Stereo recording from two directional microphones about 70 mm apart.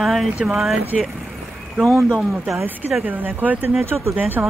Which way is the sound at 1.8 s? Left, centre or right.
Centre.